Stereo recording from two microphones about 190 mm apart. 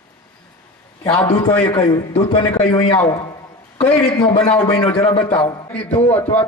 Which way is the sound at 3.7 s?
5° left (ahead or behind).